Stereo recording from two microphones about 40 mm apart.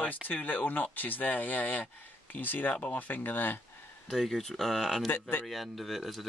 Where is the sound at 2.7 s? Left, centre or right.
Left.